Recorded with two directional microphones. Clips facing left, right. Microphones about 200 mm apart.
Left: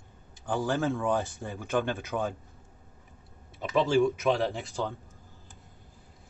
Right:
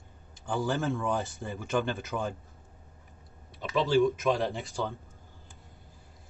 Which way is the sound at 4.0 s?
Centre (ahead or behind).